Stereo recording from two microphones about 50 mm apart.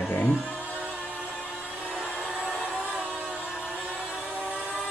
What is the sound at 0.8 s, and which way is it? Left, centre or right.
Music, centre.